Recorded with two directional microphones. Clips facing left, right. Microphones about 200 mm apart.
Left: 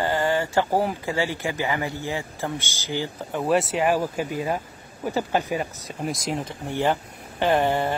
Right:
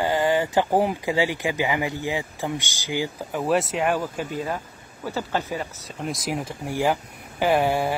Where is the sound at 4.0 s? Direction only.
10° left (ahead or behind).